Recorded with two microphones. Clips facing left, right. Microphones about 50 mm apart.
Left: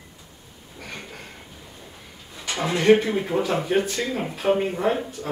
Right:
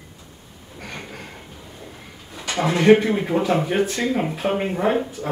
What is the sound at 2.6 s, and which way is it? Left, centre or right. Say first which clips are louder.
Speech: right 3 dB; centre.